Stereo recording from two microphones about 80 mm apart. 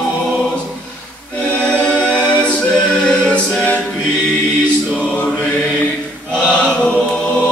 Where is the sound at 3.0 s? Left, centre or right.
Centre.